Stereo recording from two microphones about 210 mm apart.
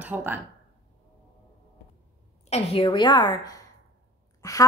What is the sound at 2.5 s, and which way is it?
A woman's voice, 25° left (ahead or behind).